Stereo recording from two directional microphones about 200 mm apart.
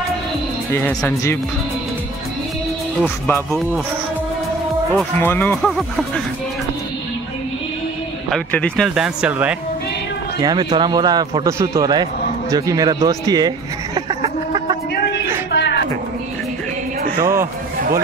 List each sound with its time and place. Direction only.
0.7 s speech: 10° left (ahead or behind)
3.0 s speech: 5° left (ahead or behind)
4.9 s speech: 10° left (ahead or behind)
8.3 s speech: 5° left (ahead or behind)
10.4 s a man's voice: 20° right (ahead or behind)
13.9 s music: 25° right (ahead or behind)
15.5 s a sound: 60° left (ahead or behind)
17.2 s a man's voice: 15° right (ahead or behind)